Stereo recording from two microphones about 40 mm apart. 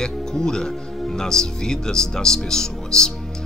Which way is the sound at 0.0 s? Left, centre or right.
Centre.